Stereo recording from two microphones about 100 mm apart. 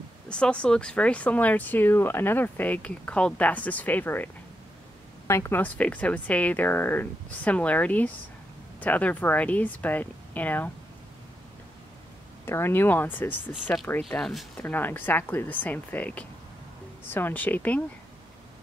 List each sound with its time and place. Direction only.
0.3 s speech: 10° left (ahead or behind)
12.4 s speech: 25° left (ahead or behind); by 14.4 s 5° left (ahead or behind)
14.6 s speech: 20° left (ahead or behind)